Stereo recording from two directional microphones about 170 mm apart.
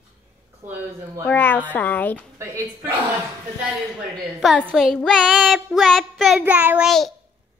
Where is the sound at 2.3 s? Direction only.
15° right (ahead or behind).